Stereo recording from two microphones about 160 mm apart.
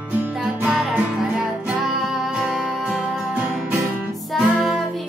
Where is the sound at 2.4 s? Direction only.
5° right (ahead or behind).